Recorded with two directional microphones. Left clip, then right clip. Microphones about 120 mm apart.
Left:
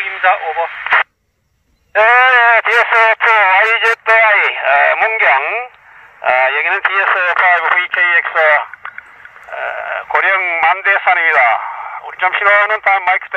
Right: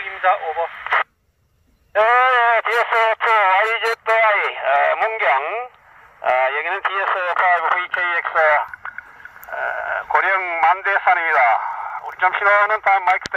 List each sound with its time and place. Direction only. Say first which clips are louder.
0.0 s speech: left 5 dB; 20° left (ahead or behind)
1.9 s radio: left 6 dB; 20° left (ahead or behind)
8.5 s radio: left 5 dB; 35° left (ahead or behind)
12.0 s speech: left 4 dB; 35° left (ahead or behind)